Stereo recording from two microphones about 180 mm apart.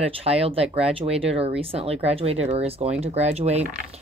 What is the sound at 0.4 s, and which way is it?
Speech, 35° right (ahead or behind).